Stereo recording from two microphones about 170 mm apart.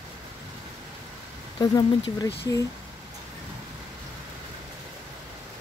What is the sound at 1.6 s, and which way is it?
Speech, 20° left (ahead or behind).